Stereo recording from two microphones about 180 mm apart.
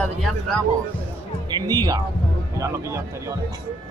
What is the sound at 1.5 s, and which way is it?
Speech, 20° right (ahead or behind).